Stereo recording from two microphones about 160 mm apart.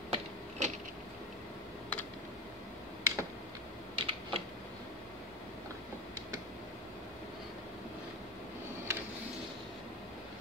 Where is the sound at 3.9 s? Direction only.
35° right (ahead or behind).